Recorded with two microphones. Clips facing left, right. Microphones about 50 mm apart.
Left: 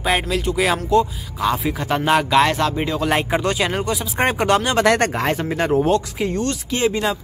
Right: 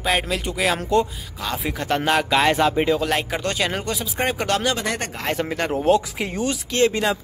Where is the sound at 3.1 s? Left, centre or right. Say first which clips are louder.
Left 4 dB; centre.